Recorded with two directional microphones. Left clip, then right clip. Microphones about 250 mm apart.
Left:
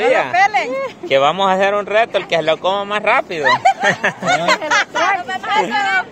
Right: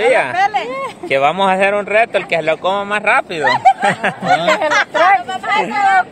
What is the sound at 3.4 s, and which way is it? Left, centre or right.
Speech, centre.